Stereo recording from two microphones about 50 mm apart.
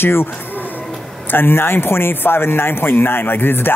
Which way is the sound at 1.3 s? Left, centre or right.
Left.